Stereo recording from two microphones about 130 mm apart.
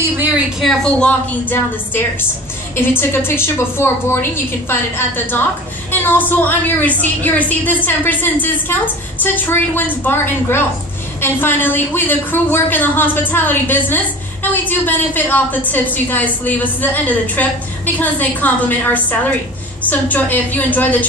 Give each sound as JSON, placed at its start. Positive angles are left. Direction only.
{"t": 0.6, "sound": "a woman's voice", "side_deg": 5}